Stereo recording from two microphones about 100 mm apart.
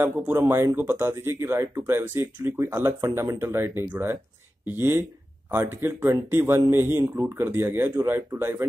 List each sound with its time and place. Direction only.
0.0 s speech: 25° right (ahead or behind)